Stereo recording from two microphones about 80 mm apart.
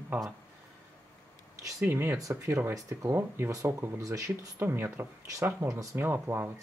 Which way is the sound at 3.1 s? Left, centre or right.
Right.